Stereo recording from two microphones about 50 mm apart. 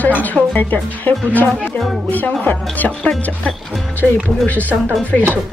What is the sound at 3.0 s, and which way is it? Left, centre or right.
Speech, centre.